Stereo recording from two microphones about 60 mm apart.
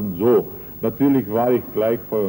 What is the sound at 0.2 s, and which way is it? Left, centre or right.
A man's voice, right.